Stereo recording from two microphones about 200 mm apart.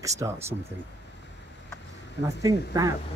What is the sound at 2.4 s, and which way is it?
Speech, 15° right (ahead or behind).